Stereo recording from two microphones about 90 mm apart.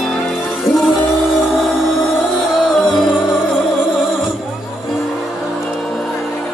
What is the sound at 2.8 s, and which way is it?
Music, 60° left (ahead or behind).